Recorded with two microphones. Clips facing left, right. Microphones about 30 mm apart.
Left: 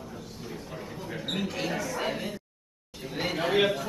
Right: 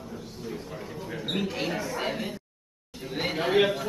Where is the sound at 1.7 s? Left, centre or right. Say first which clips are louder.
Even; right.